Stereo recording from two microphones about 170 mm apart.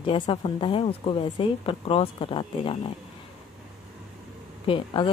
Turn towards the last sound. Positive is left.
turn(degrees=30)  # may be behind; listen again after turning